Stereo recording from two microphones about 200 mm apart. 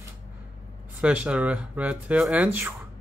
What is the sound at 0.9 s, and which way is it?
Speech, 5° right (ahead or behind).